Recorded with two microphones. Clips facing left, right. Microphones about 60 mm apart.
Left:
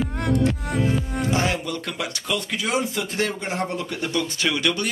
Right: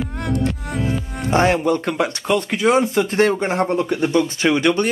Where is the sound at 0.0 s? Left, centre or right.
Centre.